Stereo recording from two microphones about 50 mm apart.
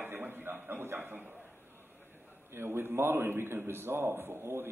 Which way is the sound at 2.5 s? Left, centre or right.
Right.